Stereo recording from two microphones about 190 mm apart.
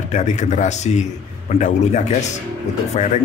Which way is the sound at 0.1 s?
40° left (ahead or behind).